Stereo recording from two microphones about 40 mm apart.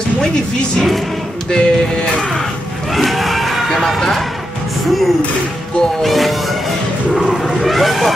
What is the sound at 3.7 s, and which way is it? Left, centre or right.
Speech, centre.